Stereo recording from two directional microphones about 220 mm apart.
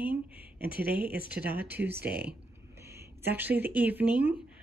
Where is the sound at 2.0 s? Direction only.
45° right (ahead or behind).